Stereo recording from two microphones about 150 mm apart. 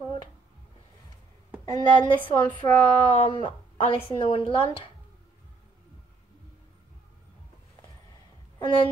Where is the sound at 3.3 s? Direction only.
35° left (ahead or behind).